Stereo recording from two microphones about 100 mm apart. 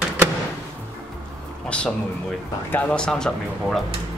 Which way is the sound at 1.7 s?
10° left (ahead or behind).